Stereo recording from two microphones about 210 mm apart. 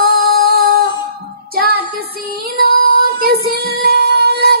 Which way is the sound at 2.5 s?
45° right (ahead or behind).